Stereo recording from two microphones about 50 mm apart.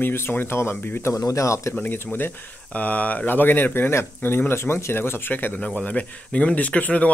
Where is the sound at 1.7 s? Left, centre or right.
Left.